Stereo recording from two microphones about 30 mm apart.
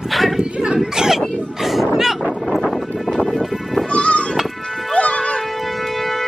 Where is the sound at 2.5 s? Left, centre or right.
Centre.